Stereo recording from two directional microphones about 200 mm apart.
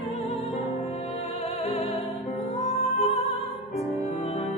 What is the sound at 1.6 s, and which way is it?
Music, 30° left (ahead or behind).